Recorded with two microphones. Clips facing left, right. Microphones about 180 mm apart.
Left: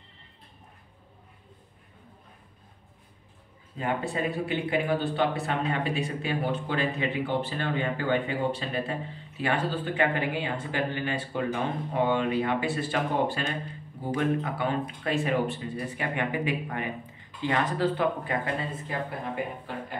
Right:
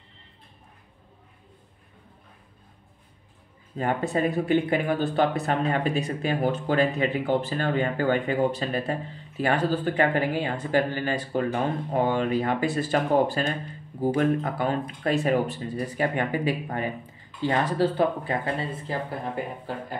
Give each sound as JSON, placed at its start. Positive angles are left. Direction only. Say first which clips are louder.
{"t": 3.7, "sound": "speech", "louder": "right 4 dB", "side_deg": -45}